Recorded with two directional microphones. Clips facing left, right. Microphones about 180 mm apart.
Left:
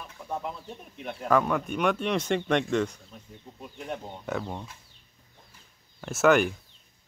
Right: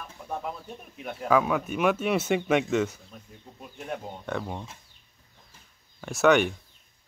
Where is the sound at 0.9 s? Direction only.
5° right (ahead or behind).